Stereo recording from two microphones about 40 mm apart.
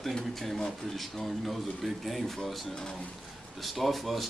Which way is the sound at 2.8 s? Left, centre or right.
Centre.